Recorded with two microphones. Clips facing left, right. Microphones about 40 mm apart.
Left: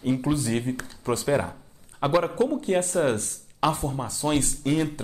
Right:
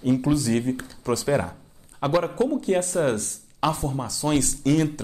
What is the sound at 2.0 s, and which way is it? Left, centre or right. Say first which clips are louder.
Speech: even; left.